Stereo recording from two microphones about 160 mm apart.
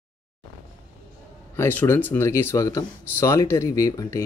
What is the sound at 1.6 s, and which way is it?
Speech, 15° left (ahead or behind).